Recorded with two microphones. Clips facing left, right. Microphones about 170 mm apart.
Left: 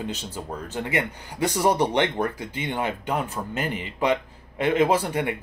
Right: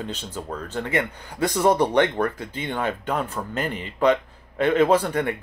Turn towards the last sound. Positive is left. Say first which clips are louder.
# right 3 dB
turn(degrees=10)  # may be behind; listen again after turning